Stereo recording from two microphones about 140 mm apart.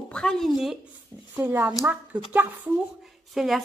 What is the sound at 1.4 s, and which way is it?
Speech, 15° right (ahead or behind).